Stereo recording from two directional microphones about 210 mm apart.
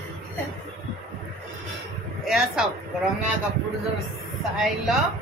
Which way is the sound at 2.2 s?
Centre (ahead or behind).